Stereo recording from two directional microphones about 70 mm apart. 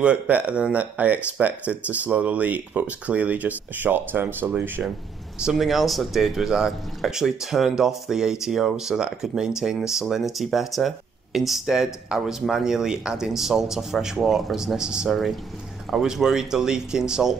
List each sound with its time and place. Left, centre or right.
0.0 s speech: centre
5.4 s speech: centre